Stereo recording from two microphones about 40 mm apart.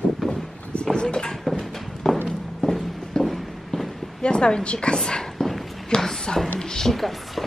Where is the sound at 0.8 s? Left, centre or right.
Centre.